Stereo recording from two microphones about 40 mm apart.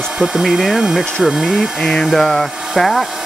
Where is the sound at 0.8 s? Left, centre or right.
Centre.